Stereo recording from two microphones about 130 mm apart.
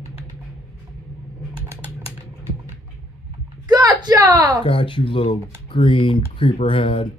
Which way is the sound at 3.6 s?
30° right (ahead or behind).